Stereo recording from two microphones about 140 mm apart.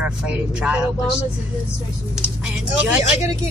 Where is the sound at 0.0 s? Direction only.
5° right (ahead or behind).